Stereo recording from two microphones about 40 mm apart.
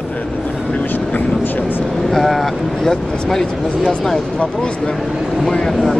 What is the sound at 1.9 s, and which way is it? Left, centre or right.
Speech, centre.